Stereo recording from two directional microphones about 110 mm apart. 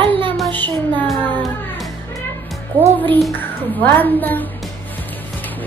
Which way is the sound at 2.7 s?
20° right (ahead or behind).